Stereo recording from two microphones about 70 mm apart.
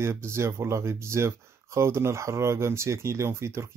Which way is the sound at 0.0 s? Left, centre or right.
Right.